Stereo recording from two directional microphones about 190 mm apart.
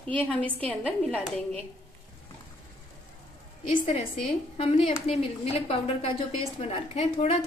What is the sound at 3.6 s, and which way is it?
A woman's voice, 30° left (ahead or behind).